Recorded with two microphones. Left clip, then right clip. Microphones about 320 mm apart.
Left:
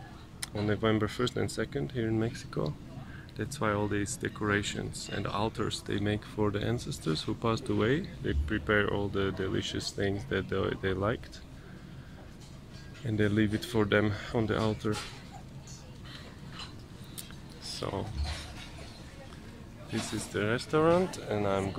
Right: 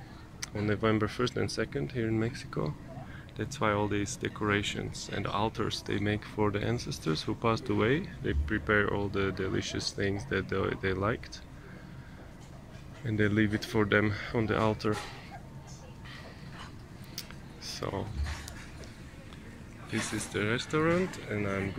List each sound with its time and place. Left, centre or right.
0.4 s speech: centre
13.0 s speech: centre
17.6 s speech: centre
20.0 s speech: centre
21.3 s speech: left